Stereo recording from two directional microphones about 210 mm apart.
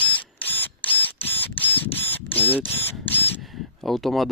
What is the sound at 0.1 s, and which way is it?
Camera, 10° left (ahead or behind).